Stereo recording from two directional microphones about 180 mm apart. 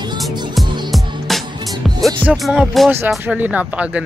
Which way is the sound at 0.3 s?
25° right (ahead or behind).